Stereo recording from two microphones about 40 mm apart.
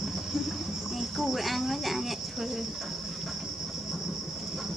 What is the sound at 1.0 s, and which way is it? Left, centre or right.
Cricket, centre.